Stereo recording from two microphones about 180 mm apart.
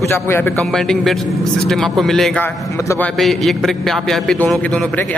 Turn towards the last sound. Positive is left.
turn(degrees=10)  # may be behind; listen again after turning